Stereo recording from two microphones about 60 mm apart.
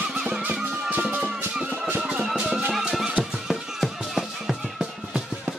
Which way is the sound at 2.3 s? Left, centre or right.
Centre.